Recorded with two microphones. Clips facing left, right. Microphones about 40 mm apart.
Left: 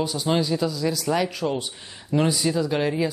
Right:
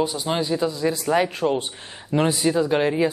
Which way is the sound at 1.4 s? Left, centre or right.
Centre.